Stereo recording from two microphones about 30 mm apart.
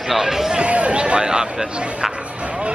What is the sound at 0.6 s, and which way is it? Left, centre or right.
Speech, right.